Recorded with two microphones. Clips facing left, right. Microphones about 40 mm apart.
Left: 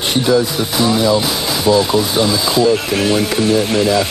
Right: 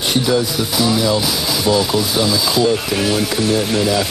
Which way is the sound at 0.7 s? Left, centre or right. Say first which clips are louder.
Left 3 dB; centre.